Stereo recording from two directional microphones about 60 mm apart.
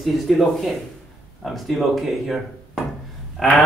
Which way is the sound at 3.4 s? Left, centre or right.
Centre.